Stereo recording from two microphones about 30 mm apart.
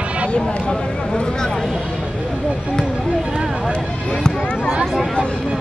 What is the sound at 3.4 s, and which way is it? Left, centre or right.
Speech, centre.